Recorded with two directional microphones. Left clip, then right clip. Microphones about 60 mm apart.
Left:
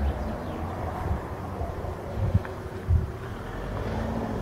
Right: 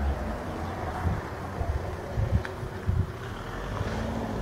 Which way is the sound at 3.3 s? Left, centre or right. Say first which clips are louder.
Even; centre.